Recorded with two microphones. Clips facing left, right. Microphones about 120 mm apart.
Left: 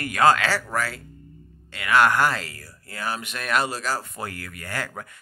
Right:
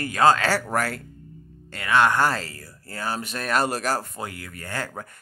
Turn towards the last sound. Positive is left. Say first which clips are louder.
# even
turn(degrees=-30)  # may be behind; listen again after turning